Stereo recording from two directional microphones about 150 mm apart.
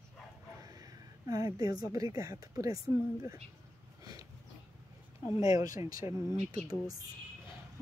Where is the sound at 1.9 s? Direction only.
20° right (ahead or behind).